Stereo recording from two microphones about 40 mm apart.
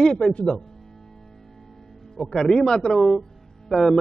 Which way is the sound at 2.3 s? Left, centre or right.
Centre.